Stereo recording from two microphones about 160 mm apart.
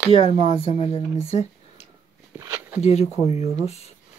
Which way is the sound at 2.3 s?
15° right (ahead or behind).